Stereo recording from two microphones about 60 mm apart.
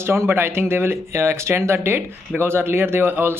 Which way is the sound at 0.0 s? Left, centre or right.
Right.